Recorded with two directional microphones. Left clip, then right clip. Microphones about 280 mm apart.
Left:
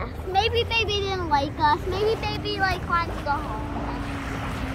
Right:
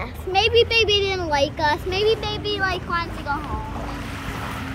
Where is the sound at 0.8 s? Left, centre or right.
Right.